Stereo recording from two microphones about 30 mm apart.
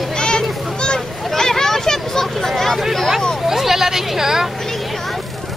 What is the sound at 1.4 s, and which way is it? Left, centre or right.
Vehicle, centre.